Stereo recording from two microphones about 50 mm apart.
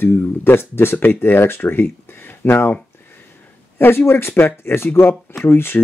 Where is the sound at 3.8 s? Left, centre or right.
Left.